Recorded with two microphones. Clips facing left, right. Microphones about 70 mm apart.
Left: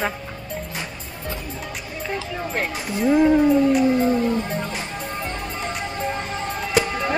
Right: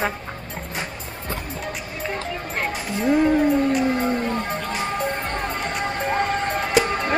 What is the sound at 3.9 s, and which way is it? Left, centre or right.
Music, right.